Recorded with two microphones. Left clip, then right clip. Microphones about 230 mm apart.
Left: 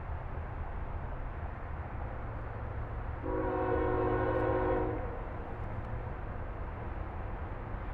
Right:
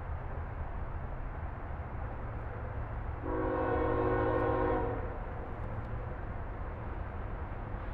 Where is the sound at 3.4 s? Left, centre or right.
Right.